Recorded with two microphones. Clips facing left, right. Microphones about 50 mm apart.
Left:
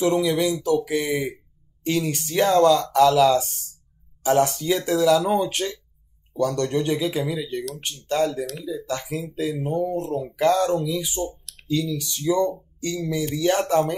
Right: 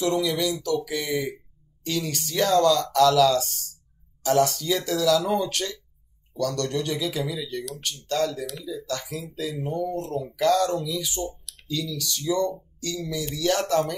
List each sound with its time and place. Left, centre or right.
0.0 s speech: left